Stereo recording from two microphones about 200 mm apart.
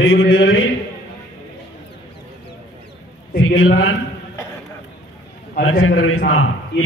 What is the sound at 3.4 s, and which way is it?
Speech, 90° left.